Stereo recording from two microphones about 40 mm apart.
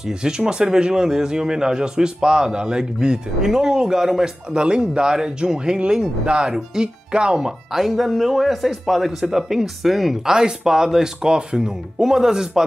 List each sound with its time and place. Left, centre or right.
0.0 s speech: centre
4.5 s speech: right; by 10.3 s centre
10.3 s speech: centre